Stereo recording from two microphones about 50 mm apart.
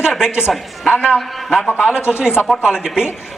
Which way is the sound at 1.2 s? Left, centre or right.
Centre.